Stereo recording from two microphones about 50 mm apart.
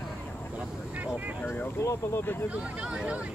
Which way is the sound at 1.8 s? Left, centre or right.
Left.